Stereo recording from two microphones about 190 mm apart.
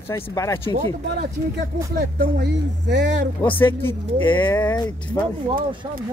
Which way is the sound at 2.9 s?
70° right (ahead or behind).